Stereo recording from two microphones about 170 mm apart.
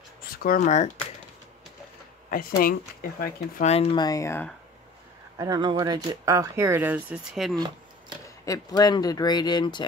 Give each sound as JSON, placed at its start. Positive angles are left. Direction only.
{"t": 0.4, "sound": "speech", "side_deg": 60}
{"t": 0.7, "sound": "speech", "side_deg": 45}
{"t": 2.3, "sound": "speech", "side_deg": 55}
{"t": 3.5, "sound": "speech", "side_deg": 40}
{"t": 4.0, "sound": "speech", "side_deg": 20}
{"t": 5.4, "sound": "speech", "side_deg": -25}
{"t": 8.5, "sound": "speech", "side_deg": 20}